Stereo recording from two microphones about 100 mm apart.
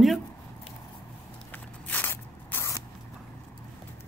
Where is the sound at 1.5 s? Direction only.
20° left (ahead or behind).